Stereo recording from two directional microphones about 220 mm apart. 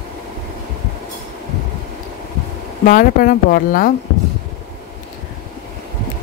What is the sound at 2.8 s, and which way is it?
Speech, 40° left (ahead or behind).